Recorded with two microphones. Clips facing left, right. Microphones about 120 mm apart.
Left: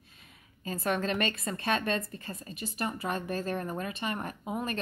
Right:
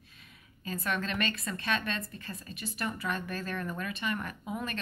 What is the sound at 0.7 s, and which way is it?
A woman's voice, 40° left (ahead or behind).